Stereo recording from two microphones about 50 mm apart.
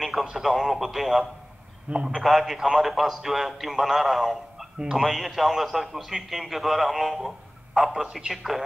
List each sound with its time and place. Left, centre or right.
0.2 s a man's voice: centre
0.5 s a man's voice: centre
2.1 s a man's voice: centre